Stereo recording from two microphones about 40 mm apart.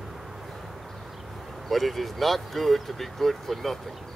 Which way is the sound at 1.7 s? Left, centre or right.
Centre.